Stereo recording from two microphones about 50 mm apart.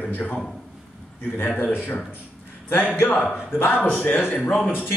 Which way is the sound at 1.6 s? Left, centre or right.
Left.